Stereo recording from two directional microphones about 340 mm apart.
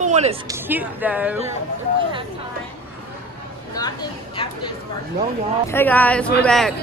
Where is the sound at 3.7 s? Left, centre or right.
Centre.